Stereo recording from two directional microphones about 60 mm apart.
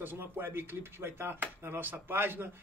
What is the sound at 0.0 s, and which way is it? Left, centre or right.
A man's voice, right.